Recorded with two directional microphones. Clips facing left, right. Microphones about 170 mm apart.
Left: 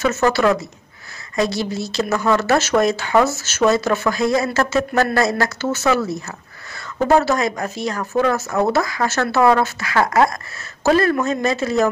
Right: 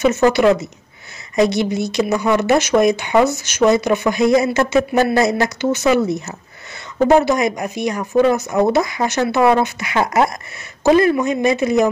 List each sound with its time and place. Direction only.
0.0 s speech: 15° right (ahead or behind)
7.1 s speech: 15° right (ahead or behind)